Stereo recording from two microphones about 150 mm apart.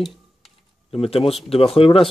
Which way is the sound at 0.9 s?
40° left (ahead or behind).